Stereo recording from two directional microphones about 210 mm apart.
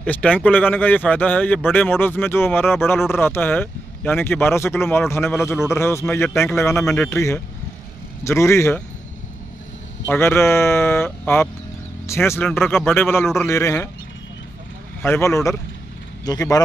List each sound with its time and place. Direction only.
0.0 s speech: 5° left (ahead or behind)
10.0 s speech: 10° left (ahead or behind)
15.0 s speech: 10° left (ahead or behind)